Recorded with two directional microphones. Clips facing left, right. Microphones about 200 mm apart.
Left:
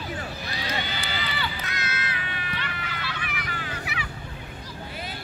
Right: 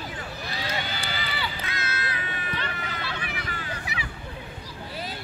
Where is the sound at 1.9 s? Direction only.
35° right (ahead or behind).